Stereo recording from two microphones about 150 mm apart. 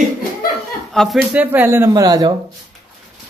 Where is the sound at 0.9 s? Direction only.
Centre (ahead or behind); by 2.3 s 25° right (ahead or behind).